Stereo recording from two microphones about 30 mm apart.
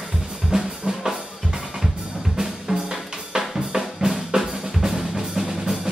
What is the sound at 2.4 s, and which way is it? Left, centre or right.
Drum kit, centre.